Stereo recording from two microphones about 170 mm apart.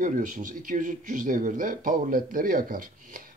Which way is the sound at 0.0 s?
50° right (ahead or behind).